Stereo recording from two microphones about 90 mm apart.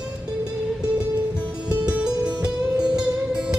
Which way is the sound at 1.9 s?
10° right (ahead or behind).